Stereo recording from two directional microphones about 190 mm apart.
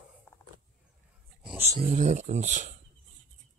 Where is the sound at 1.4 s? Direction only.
5° right (ahead or behind).